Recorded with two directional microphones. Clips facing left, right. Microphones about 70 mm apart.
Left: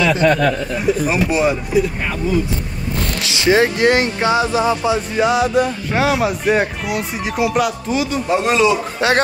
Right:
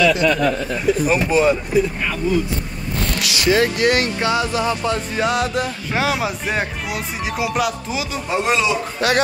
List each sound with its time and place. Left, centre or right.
0.0 s speech: left
1.1 s speech: centre
3.3 s speech: left
5.1 s speech: centre
9.0 s speech: left